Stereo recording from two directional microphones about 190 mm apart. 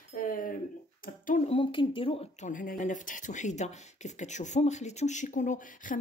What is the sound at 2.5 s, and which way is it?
Speech, 45° left (ahead or behind).